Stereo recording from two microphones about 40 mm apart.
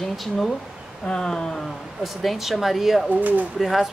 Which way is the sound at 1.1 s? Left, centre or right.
Centre.